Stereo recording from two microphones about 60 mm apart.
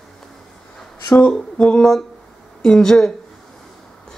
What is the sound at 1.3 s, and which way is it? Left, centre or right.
Speech, centre.